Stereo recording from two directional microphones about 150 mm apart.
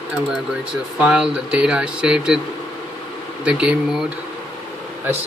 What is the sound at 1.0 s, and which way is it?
Speech, 5° right (ahead or behind).